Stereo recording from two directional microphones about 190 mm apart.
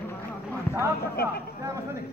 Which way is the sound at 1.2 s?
55° left (ahead or behind).